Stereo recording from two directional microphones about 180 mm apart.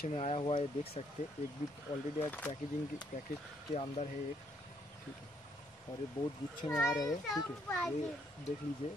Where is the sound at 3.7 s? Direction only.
35° left (ahead or behind).